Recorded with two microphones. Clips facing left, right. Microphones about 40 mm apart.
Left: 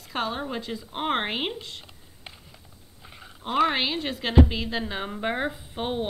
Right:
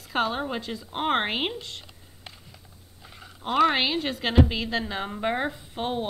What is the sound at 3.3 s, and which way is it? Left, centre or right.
A woman's voice, centre.